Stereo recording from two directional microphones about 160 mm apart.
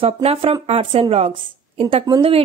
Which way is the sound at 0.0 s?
40° right (ahead or behind).